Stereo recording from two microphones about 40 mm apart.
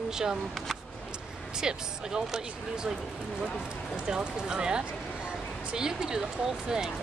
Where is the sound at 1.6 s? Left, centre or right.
Centre.